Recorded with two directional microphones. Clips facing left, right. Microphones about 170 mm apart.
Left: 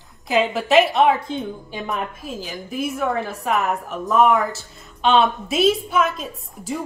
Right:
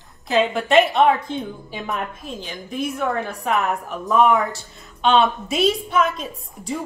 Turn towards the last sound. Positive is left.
turn(degrees=0)  # may be behind; listen again after turning